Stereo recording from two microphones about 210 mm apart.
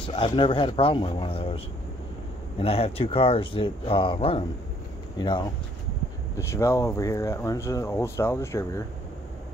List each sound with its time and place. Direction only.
0.0 s speech: 25° left (ahead or behind)
2.6 s speech: 30° left (ahead or behind)
6.3 s speech: 15° left (ahead or behind)